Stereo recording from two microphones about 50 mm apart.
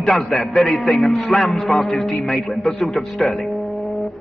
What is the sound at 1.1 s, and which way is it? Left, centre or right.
A man's voice, centre.